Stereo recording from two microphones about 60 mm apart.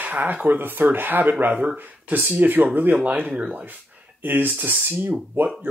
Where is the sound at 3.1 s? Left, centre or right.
Right.